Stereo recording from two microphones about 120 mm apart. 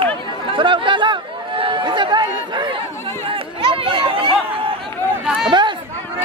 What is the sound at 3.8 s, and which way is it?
Chatter, 45° right (ahead or behind).